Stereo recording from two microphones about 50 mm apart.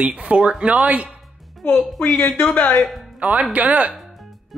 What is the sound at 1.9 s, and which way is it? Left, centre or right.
Speech, left.